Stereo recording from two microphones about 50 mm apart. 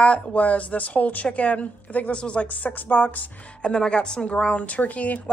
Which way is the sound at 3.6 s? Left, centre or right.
Centre.